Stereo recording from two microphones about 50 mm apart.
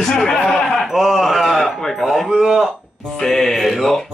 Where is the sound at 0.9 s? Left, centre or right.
Centre.